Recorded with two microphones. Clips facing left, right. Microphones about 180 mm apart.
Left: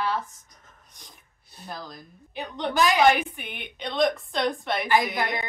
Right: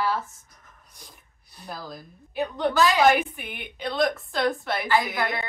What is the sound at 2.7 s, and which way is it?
Speech, 15° left (ahead or behind).